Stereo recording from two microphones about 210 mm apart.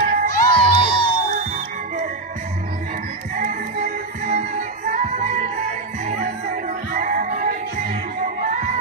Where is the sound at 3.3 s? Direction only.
35° right (ahead or behind).